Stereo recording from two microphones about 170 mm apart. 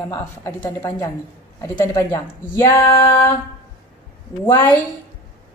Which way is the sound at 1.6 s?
20° left (ahead or behind).